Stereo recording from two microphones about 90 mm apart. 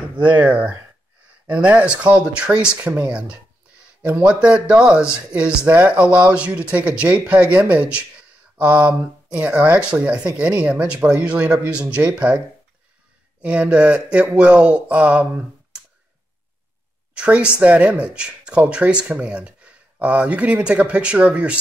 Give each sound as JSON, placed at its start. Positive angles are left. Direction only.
{"t": 0.4, "sound": "speech", "side_deg": -15}
{"t": 3.1, "sound": "speech", "side_deg": -10}
{"t": 13.4, "sound": "speech", "side_deg": -15}
{"t": 17.1, "sound": "speech", "side_deg": -10}